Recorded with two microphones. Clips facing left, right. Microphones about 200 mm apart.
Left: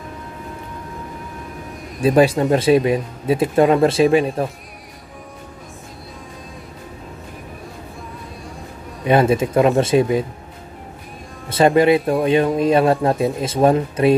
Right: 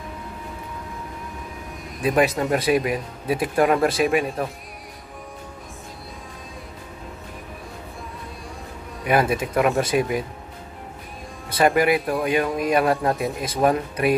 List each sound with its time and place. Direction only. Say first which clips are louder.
2.0 s speech: left 6 dB; 30° left (ahead or behind)
9.0 s speech: left 5 dB; 25° left (ahead or behind)
11.4 s speech: left 5 dB; 25° left (ahead or behind)